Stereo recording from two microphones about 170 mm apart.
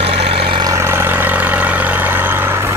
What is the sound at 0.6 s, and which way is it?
Vehicle, 15° right (ahead or behind).